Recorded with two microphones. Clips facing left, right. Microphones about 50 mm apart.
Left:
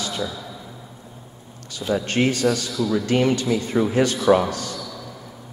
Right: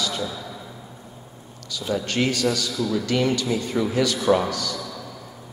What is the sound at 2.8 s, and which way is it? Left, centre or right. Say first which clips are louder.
Speech: left 2 dB; left.